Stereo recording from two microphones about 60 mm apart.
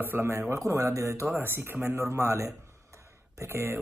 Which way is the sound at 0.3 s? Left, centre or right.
Right.